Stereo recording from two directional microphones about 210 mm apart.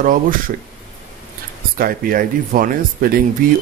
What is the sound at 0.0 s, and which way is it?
Speech, 40° right (ahead or behind).